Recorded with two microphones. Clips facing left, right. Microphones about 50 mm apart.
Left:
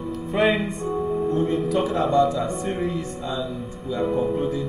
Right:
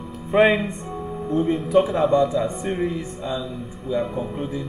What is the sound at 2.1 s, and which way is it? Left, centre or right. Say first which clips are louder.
Speech: even; centre.